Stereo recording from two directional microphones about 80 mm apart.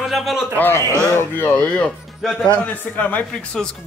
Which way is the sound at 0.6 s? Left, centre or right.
Left.